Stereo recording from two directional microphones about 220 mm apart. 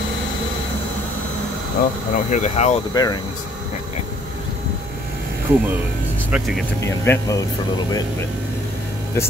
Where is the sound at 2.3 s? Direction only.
30° left (ahead or behind).